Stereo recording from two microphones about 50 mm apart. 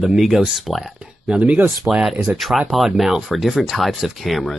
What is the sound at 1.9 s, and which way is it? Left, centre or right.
Speech, centre.